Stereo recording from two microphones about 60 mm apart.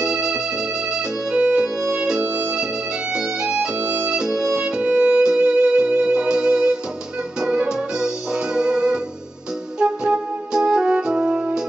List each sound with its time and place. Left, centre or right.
0.0 s music: centre
4.2 s violin: centre
7.3 s music: centre